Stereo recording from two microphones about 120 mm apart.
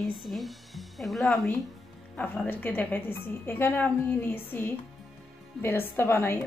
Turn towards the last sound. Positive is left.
turn(degrees=20)  # may be behind; listen again after turning